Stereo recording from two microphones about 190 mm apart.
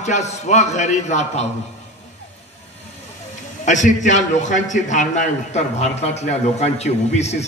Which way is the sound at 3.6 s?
40° left (ahead or behind).